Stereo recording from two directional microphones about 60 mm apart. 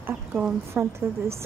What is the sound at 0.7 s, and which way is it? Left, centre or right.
Speech, right.